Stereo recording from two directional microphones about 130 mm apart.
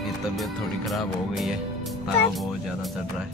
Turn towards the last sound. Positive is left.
turn(degrees=0)  # may be behind; listen again after turning